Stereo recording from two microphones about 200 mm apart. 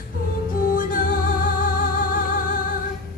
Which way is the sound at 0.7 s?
45° left (ahead or behind).